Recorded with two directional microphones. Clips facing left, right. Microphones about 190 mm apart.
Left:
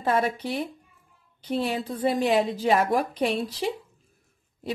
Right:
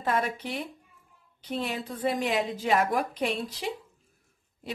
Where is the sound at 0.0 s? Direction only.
35° left (ahead or behind).